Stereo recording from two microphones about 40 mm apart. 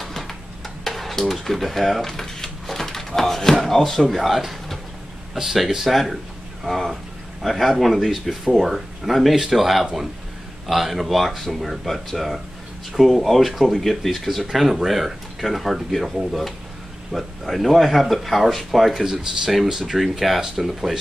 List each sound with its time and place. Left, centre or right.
0.0 s a sound: centre
0.8 s speech: centre
7.4 s speech: centre
17.1 s speech: centre